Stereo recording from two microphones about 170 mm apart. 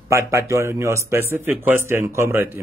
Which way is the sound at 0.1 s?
15° right (ahead or behind).